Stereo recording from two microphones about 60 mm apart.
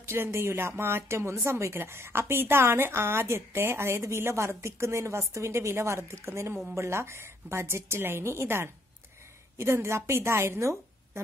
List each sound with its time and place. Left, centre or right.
0.0 s a woman's voice: right